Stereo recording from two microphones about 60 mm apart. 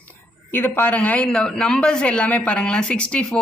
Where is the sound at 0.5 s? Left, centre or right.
Left.